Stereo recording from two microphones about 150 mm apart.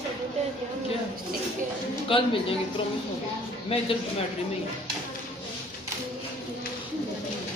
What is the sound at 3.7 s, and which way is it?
Speech, 40° left (ahead or behind).